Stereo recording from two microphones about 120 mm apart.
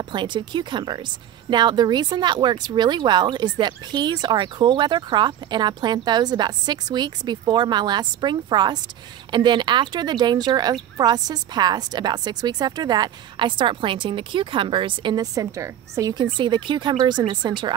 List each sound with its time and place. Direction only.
0.1 s speech: 40° right (ahead or behind)
15.3 s speech: 25° right (ahead or behind)